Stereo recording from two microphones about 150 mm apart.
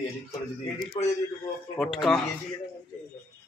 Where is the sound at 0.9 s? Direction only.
30° left (ahead or behind).